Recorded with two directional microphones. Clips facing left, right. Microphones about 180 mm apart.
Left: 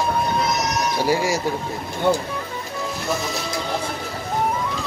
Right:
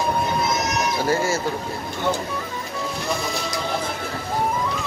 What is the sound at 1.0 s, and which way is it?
Speech, 15° left (ahead or behind).